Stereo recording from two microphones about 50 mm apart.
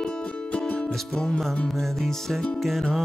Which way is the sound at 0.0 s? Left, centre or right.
Centre.